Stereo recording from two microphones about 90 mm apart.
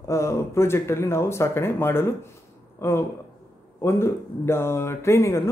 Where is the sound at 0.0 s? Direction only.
35° left (ahead or behind).